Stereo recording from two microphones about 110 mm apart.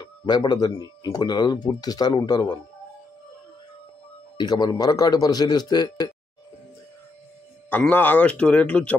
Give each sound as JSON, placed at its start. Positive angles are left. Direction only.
{"t": 0.0, "sound": "speech", "side_deg": 40}
{"t": 4.4, "sound": "speech", "side_deg": 40}
{"t": 7.7, "sound": "a man's voice", "side_deg": 15}